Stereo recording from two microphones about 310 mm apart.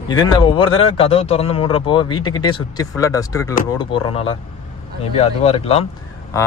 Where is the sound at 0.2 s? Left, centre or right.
Centre.